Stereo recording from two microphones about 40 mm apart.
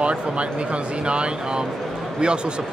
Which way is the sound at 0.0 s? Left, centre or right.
Right.